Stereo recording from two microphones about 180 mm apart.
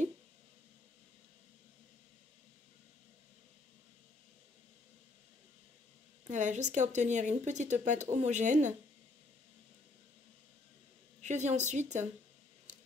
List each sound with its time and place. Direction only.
6.2 s speech: 40° right (ahead or behind)
11.1 s speech: 40° right (ahead or behind)